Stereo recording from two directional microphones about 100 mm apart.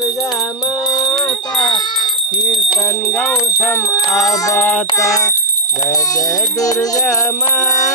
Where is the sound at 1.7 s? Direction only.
45° left (ahead or behind).